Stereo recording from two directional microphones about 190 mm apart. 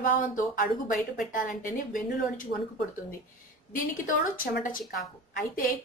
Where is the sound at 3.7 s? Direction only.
45° left (ahead or behind).